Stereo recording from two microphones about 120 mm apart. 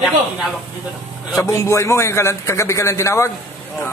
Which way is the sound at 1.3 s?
25° left (ahead or behind).